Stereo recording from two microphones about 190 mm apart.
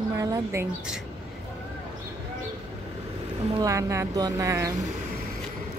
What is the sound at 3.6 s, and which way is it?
A woman's voice, 15° right (ahead or behind).